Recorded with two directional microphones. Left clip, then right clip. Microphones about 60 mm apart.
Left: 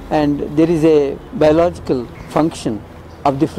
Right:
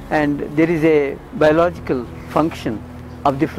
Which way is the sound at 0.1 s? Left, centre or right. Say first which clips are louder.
Left 2 dB; left.